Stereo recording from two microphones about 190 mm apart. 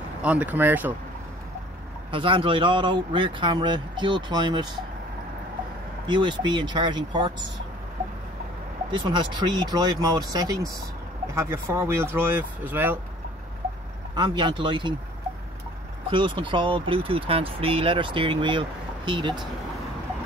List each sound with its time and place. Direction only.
0.2 s speech: 5° right (ahead or behind)
2.0 s speech: 25° right (ahead or behind)
6.0 s speech: 25° right (ahead or behind)
8.9 s speech: 25° right (ahead or behind)
14.1 s speech: 25° right (ahead or behind)
16.1 s speech: 25° right (ahead or behind)